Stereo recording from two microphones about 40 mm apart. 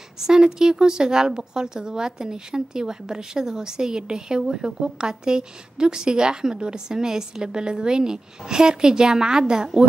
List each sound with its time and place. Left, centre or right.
0.3 s speech: centre